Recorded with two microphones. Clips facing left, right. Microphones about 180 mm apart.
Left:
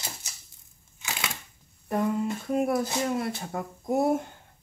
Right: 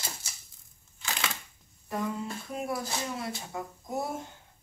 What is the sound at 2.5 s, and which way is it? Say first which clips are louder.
Speech: left 8 dB; 50° left (ahead or behind).